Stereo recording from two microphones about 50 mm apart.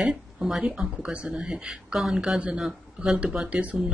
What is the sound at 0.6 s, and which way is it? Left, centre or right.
Speech, centre.